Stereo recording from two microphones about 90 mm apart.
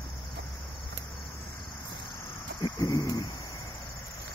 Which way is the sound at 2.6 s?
45° left (ahead or behind).